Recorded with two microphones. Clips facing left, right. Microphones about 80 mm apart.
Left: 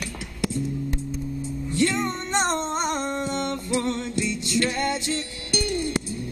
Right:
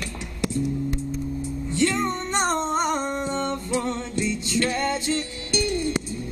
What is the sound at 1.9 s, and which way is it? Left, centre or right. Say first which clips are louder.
Music: right 1 dB; centre.